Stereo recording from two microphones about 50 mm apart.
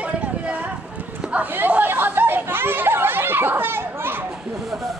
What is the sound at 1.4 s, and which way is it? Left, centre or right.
Chatter, right.